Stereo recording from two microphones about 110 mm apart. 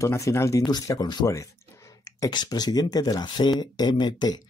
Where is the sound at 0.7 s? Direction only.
35° left (ahead or behind).